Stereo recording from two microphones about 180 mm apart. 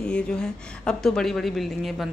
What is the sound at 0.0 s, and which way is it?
Speech, 5° left (ahead or behind).